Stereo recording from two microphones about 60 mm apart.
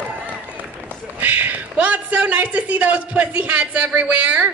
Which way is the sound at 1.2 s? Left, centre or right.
Right.